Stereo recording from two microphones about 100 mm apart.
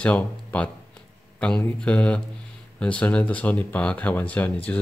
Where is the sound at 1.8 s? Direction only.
10° left (ahead or behind).